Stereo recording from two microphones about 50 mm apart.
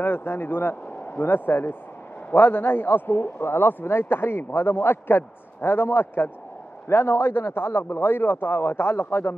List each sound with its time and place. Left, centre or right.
0.0 s a man's voice: left